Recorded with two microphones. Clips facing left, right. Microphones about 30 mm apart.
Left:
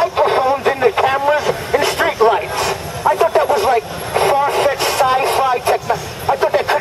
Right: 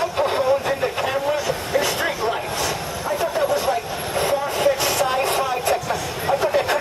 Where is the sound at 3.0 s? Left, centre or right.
Left.